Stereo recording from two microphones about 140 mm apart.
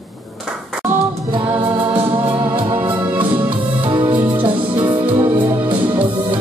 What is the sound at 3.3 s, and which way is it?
Music, 35° right (ahead or behind).